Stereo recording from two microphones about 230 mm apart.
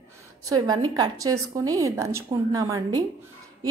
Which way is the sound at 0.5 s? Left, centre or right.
Centre.